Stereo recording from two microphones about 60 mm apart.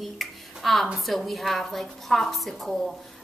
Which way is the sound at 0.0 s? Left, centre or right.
Centre.